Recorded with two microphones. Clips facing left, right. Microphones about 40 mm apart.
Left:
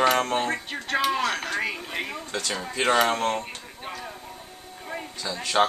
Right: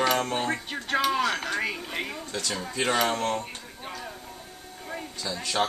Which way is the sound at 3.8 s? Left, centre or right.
Centre.